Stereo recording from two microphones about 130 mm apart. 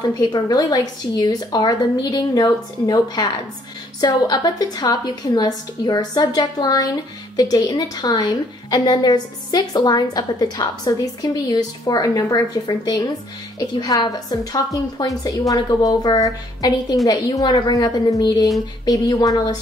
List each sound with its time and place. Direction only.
0.2 s a woman's voice: 35° left (ahead or behind)